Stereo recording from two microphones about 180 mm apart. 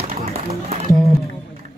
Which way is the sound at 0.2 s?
35° right (ahead or behind).